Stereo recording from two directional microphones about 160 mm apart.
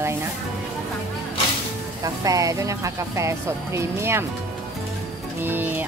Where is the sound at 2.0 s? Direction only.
20° right (ahead or behind).